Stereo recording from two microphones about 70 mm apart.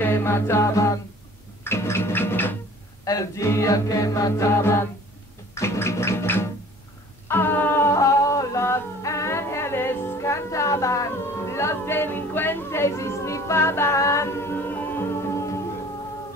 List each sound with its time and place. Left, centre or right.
0.0 s music: left
3.1 s music: left
5.5 s gargling: left
7.2 s a sound: left
7.8 s music: left